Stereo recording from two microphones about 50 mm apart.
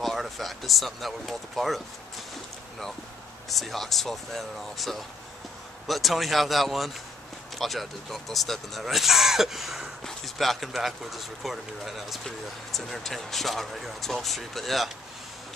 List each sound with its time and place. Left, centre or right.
0.0 s speech: centre
3.4 s speech: centre